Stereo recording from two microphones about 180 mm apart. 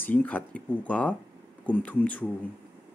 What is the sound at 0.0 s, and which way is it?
Speech, 10° left (ahead or behind).